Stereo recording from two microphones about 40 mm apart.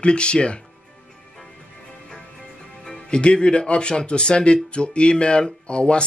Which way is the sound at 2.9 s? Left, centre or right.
Left.